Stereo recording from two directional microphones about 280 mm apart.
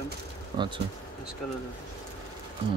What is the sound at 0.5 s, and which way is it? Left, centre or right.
Speech, centre.